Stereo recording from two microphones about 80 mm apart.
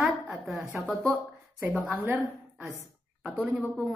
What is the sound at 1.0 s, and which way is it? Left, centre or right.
Speech, right.